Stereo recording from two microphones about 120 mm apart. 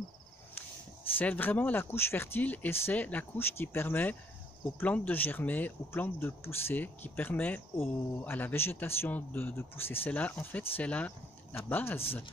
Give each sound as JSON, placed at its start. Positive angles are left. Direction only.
{"t": 1.1, "sound": "speech", "side_deg": 15}